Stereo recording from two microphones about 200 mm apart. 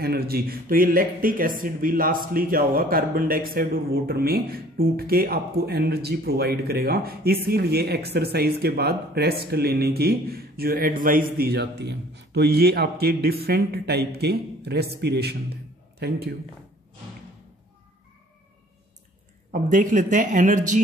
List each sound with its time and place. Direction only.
0.0 s a man's voice: 50° right (ahead or behind)
19.5 s speech: 40° right (ahead or behind)